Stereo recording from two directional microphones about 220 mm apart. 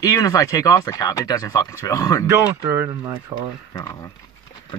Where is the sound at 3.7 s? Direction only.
15° left (ahead or behind).